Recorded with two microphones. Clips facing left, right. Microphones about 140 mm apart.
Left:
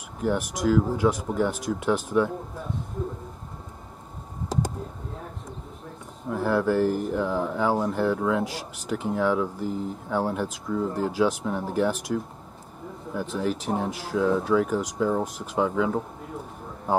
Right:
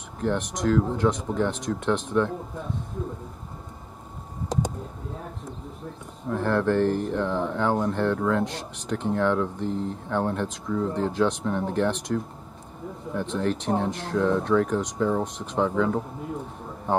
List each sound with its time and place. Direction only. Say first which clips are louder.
0.2 s speech: left 1 dB; 5° left (ahead or behind)
6.2 s speech: even; 5° left (ahead or behind)